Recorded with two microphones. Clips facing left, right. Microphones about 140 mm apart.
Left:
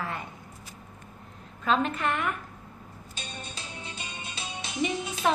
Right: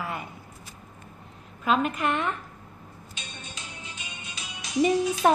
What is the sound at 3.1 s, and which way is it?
Music, 30° left (ahead or behind).